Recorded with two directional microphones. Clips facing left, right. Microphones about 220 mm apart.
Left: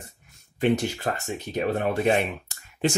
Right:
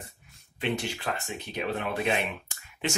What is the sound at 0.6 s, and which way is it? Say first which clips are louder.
Speech: left 8 dB; 45° left (ahead or behind).